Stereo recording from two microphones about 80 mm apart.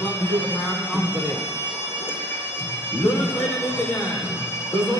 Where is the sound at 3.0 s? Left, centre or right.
Left.